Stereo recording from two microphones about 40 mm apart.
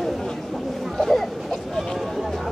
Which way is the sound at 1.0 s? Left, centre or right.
Centre.